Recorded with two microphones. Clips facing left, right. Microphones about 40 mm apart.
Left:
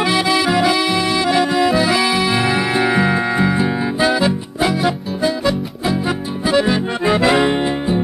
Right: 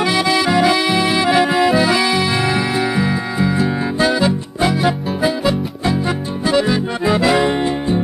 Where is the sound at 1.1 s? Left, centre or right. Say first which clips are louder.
Right 1 dB; centre.